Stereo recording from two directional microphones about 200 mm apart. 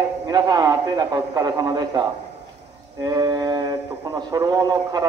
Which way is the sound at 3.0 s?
20° right (ahead or behind).